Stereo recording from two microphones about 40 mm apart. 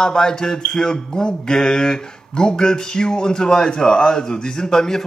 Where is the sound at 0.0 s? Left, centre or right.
Centre.